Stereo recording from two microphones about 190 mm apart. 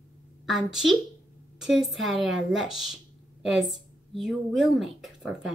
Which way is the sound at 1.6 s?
Centre (ahead or behind).